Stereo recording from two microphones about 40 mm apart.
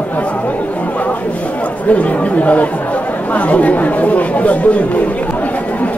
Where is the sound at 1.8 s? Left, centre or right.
Left.